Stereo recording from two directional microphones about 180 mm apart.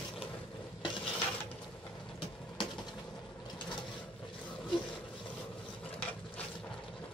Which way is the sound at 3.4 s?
25° left (ahead or behind).